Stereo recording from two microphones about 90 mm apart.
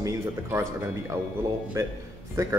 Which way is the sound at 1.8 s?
35° right (ahead or behind).